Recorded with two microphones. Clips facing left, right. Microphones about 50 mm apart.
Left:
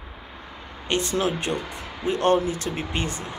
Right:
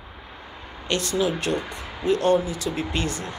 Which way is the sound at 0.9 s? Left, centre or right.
Left.